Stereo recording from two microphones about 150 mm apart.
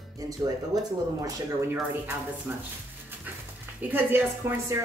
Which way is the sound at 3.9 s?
15° right (ahead or behind).